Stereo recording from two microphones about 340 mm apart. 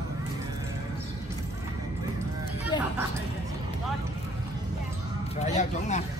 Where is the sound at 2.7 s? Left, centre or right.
Centre.